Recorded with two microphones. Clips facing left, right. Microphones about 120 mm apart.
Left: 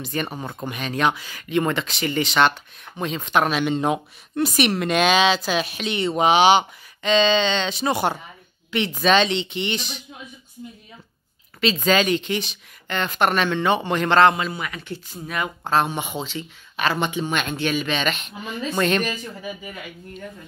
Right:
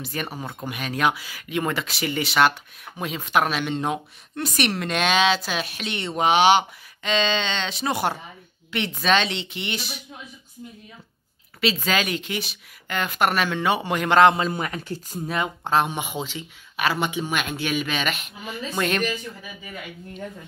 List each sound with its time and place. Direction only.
0.0 s speech: 5° right (ahead or behind)
11.6 s speech: 5° right (ahead or behind)
14.5 s speech: 40° right (ahead or behind)
15.3 s speech: 20° right (ahead or behind); by 19.0 s 5° right (ahead or behind)